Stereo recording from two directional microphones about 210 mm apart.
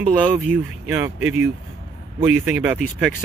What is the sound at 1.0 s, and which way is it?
Speech, 10° right (ahead or behind).